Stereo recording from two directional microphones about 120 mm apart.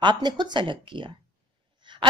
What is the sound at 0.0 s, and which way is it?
A woman's voice, 40° right (ahead or behind).